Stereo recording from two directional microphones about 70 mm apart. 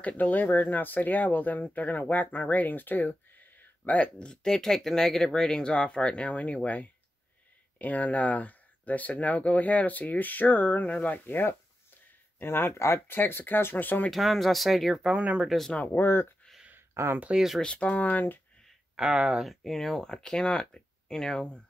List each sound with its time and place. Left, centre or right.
0.0 s speech: left
14.1 s speech: centre
15.0 s speech: centre
15.4 s speech: centre
15.7 s speech: left
16.0 s speech: left
16.9 s speech: right
17.6 s speech: centre
18.9 s speech: centre
19.4 s speech: centre